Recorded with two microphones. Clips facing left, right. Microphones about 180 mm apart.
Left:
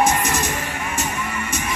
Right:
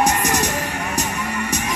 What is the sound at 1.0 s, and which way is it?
Music, 70° right (ahead or behind).